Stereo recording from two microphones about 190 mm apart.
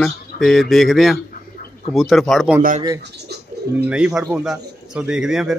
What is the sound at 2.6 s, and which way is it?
Speech, 45° right (ahead or behind).